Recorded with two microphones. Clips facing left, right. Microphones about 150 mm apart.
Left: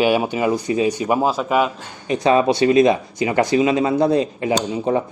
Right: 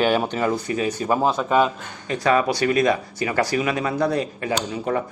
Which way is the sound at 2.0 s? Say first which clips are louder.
Left 4 dB; 20° left (ahead or behind).